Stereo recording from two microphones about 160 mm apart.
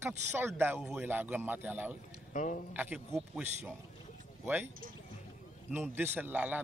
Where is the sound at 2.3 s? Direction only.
50° left (ahead or behind).